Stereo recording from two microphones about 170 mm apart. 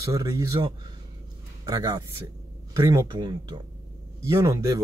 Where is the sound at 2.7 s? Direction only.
15° right (ahead or behind).